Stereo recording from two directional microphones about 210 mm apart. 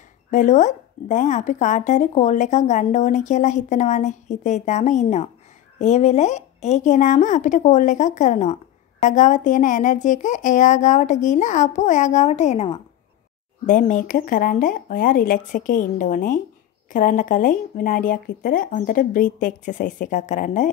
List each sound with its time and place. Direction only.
0.3 s speech: 35° left (ahead or behind)
13.7 s speech: 40° left (ahead or behind)